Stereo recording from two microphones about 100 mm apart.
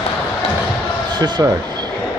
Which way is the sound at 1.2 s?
45° right (ahead or behind).